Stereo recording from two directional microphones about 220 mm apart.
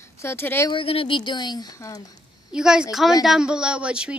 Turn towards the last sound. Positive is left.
turn(degrees=-5)  # may be behind; listen again after turning